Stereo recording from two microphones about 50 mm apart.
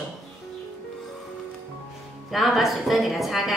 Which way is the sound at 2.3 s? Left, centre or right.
Centre.